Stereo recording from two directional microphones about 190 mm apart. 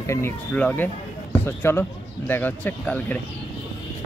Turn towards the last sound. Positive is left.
turn(degrees=10)  # may be behind; listen again after turning